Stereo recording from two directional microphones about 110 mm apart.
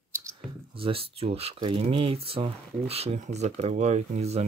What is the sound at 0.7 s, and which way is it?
Speech, 55° right (ahead or behind).